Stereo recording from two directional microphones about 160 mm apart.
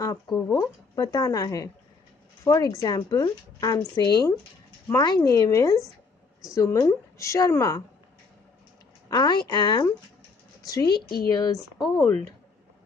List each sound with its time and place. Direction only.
0.0 s a woman's voice: 20° left (ahead or behind)
9.1 s a woman's voice: 30° left (ahead or behind)